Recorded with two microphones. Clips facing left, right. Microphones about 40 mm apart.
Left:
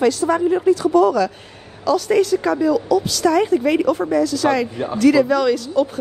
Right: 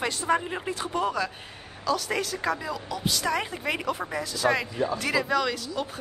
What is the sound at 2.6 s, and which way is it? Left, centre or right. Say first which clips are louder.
Speech: left 14 dB; centre.